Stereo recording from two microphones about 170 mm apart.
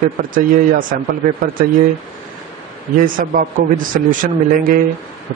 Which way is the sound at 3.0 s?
55° right (ahead or behind).